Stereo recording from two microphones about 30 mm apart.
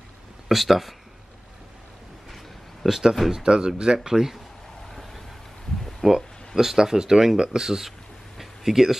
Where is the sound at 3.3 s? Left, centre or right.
Right.